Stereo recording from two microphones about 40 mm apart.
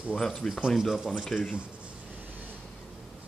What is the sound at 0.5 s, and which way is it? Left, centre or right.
Speech, centre.